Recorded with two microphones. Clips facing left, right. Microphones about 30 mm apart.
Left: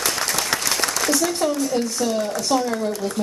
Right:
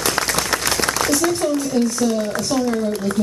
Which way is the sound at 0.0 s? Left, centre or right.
Centre.